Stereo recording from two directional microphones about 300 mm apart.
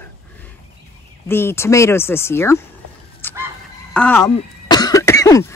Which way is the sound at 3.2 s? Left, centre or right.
Centre.